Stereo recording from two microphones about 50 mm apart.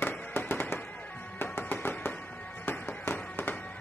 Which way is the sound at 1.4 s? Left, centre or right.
Left.